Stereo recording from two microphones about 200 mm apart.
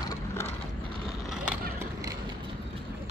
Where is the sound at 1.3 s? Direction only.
5° right (ahead or behind).